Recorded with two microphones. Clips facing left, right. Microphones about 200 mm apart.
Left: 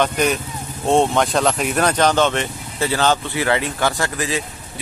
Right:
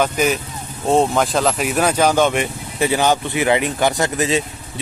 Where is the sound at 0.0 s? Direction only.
5° right (ahead or behind).